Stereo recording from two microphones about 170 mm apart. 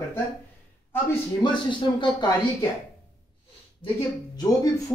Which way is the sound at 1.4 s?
25° left (ahead or behind).